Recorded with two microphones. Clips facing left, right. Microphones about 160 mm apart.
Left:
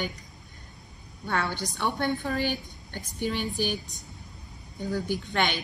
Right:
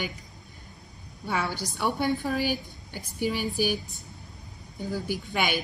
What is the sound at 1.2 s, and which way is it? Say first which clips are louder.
A woman's voice: even; 5° right (ahead or behind).